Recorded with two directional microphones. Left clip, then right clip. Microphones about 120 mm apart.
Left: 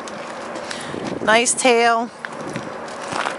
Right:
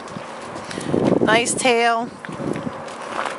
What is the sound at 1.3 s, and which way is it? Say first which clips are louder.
Speech: left 7 dB; centre (ahead or behind).